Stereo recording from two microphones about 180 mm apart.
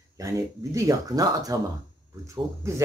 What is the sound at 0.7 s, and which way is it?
Speech, 20° right (ahead or behind).